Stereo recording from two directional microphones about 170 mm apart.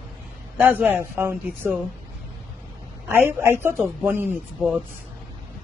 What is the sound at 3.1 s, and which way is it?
A man's voice, 10° right (ahead or behind).